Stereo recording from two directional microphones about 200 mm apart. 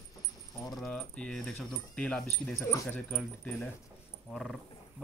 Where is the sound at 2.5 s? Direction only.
15° left (ahead or behind).